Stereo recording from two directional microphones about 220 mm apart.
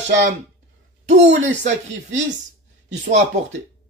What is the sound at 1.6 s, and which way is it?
Speech, 35° right (ahead or behind).